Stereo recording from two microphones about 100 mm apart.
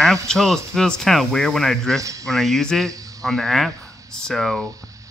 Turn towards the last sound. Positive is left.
turn(degrees=0)  # may be behind; listen again after turning